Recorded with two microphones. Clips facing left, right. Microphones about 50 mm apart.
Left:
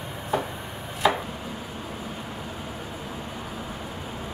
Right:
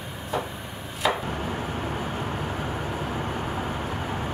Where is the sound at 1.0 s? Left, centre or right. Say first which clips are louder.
Left 2 dB; centre.